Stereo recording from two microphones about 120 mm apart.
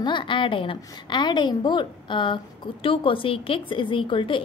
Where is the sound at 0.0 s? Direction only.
45° left (ahead or behind).